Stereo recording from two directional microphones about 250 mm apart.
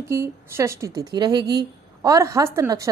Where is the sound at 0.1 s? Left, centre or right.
Centre.